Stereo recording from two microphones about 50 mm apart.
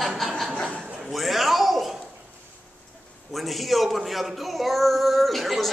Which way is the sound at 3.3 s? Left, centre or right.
Centre.